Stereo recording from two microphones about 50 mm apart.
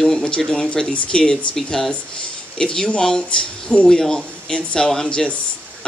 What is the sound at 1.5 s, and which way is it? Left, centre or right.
Speech, centre.